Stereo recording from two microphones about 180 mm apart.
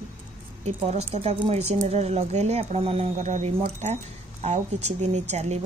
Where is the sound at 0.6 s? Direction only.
35° right (ahead or behind).